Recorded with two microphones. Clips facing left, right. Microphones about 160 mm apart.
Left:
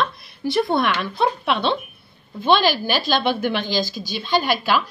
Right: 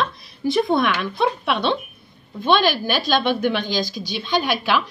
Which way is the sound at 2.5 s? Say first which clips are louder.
Even; 55° right (ahead or behind).